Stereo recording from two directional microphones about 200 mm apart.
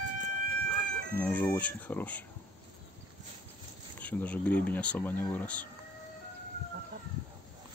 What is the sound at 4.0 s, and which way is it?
Speech, 10° left (ahead or behind).